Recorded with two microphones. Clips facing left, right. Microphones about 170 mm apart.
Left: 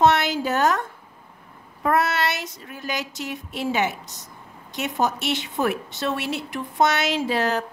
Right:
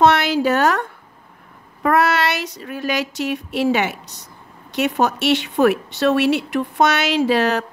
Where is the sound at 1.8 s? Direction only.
80° right.